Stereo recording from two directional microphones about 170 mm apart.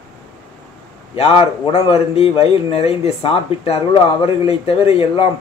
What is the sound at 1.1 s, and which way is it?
Speech, 35° left (ahead or behind).